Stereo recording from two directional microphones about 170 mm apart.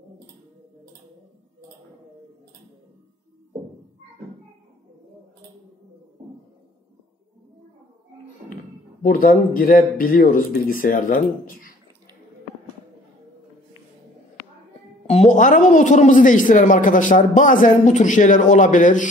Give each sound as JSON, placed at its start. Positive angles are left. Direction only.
{"t": 9.0, "sound": "speech", "side_deg": 55}
{"t": 15.0, "sound": "speech", "side_deg": 45}